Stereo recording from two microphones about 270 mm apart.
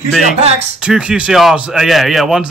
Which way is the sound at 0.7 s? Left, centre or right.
Centre.